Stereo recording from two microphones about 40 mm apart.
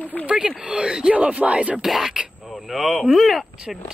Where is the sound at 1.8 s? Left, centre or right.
Centre.